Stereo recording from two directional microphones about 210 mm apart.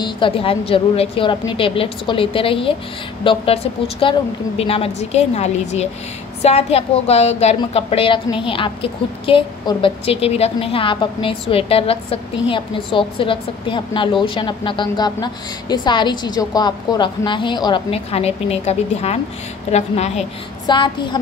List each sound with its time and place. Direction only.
0.0 s a woman's voice: 25° left (ahead or behind)